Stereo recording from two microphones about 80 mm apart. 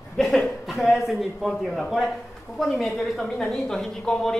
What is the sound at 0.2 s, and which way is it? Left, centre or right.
A man's voice, centre.